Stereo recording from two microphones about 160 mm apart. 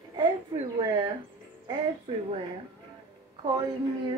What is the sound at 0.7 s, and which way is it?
Speech, 20° right (ahead or behind).